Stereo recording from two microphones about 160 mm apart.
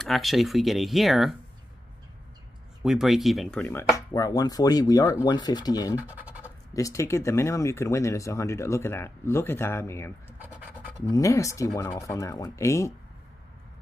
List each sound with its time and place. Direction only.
0.0 s speech: centre (ahead or behind)
2.8 s speech: 5° right (ahead or behind); by 5.9 s 25° left (ahead or behind)
5.9 s speech: 10° right (ahead or behind)
6.4 s speech: 20° left (ahead or behind)
10.4 s scratch: 10° right (ahead or behind)
11.1 s speech: 20° left (ahead or behind)